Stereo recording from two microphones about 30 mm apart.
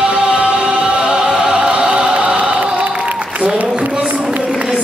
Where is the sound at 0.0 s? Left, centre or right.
Right.